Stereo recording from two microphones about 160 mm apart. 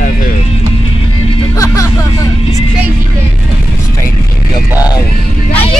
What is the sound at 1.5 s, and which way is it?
Music, 20° left (ahead or behind).